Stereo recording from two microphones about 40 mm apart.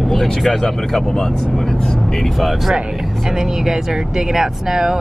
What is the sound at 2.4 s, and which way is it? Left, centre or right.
Speech, centre.